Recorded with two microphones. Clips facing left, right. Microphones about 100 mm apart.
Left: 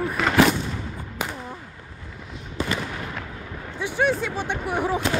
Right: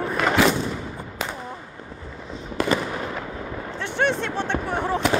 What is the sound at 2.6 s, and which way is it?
Fireworks, 65° right (ahead or behind).